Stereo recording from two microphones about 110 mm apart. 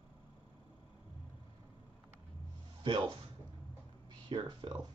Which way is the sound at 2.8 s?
45° right (ahead or behind).